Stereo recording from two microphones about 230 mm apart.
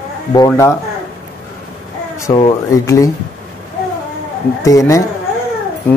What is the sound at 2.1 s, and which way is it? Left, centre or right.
Speech, centre.